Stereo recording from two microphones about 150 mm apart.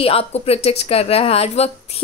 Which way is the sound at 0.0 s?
40° left (ahead or behind).